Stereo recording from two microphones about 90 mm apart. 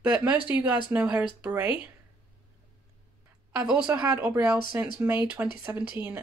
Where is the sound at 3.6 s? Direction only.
10° right (ahead or behind).